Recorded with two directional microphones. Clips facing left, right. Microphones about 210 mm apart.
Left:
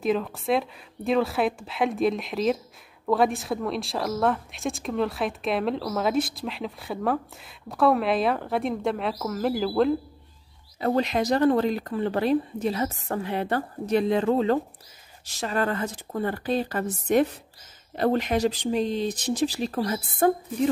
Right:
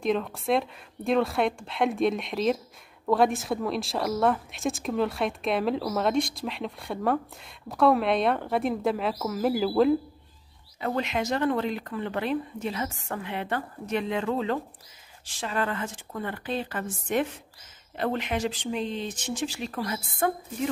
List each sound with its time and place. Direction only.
0.0 s a woman's voice: centre (ahead or behind)
10.8 s speech: 35° left (ahead or behind)